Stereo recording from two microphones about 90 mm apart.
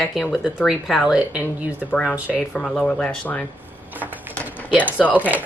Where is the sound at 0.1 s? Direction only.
Centre (ahead or behind).